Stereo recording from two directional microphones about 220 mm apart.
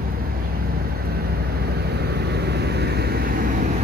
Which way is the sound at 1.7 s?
45° right (ahead or behind).